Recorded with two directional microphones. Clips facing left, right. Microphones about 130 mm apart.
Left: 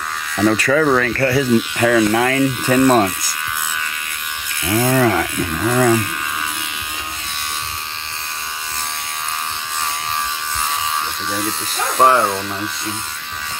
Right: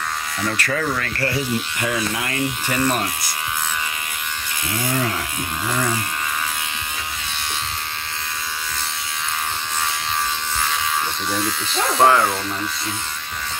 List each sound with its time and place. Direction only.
0.4 s speech: 90° left
4.6 s speech: 55° left (ahead or behind)
5.0 s speech: 90° left
12.0 s speech: 20° left (ahead or behind)